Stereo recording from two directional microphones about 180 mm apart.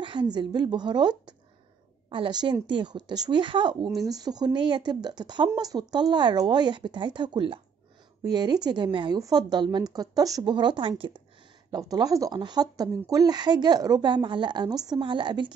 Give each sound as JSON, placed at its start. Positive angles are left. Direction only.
{"t": 0.0, "sound": "speech", "side_deg": -25}